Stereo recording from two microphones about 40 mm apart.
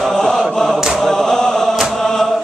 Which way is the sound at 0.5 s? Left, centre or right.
Centre.